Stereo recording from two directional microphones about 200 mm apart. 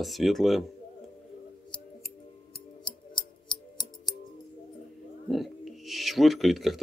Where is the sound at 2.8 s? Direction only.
20° left (ahead or behind).